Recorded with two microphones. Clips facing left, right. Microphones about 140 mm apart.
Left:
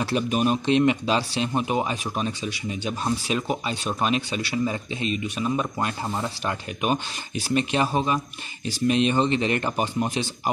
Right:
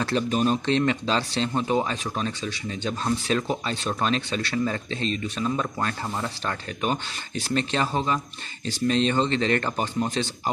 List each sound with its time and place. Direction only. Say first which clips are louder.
0.0 s speech: even; 15° left (ahead or behind)